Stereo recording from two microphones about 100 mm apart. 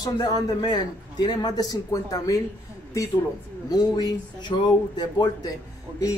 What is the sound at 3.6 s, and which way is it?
A man's voice, 45° left (ahead or behind).